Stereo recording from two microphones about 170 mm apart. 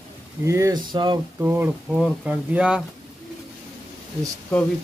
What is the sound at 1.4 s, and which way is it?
Speech, 10° right (ahead or behind).